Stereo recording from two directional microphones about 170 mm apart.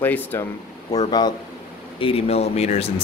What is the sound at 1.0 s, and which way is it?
Speech, 25° left (ahead or behind).